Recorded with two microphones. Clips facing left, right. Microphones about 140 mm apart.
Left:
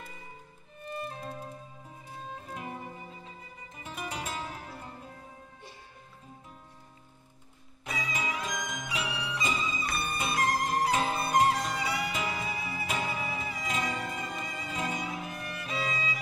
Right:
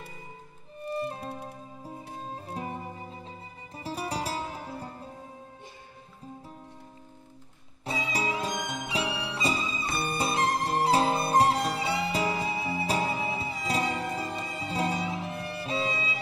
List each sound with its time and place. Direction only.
0.8 s music: 35° right (ahead or behind)
7.8 s music: 30° right (ahead or behind)